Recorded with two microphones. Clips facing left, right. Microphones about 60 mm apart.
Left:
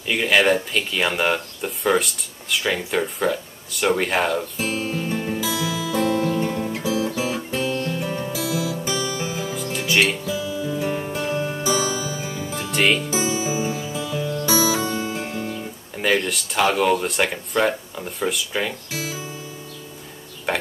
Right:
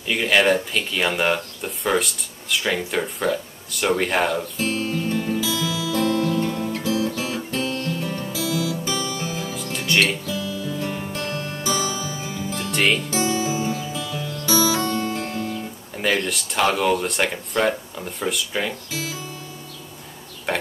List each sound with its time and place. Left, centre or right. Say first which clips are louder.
0.0 s speech: even; centre
5.9 s guitar: even; centre
7.2 s music: left 2 dB; centre
9.4 s music: left 2 dB; centre
10.0 s music: left 1 dB; centre
12.7 s music: left 1 dB; centre
13.0 s music: right 1 dB; centre
16.0 s speech: left 1 dB; centre